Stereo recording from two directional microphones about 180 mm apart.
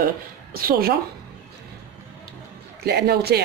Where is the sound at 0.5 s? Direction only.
55° right (ahead or behind).